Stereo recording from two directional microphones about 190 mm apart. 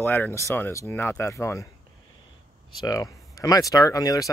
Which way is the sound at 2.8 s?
20° left (ahead or behind).